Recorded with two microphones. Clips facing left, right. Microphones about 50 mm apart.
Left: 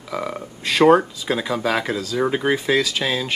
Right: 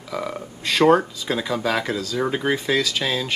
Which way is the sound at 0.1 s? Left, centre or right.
Centre.